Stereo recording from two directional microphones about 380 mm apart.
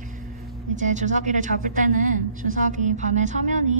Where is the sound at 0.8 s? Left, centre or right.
Centre.